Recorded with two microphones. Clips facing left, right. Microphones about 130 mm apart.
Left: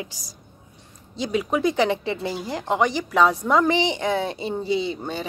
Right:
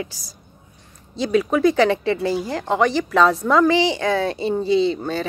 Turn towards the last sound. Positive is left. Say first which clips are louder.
# right 6 dB
turn(degrees=15)  # may be behind; listen again after turning